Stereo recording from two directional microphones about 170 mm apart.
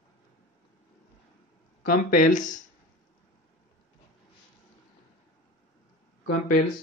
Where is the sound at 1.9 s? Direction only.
50° left (ahead or behind).